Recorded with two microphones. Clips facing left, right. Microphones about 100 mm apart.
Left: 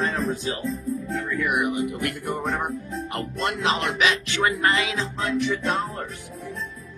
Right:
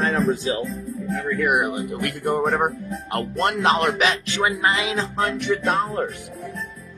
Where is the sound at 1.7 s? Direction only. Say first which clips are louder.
Even; 45° right (ahead or behind).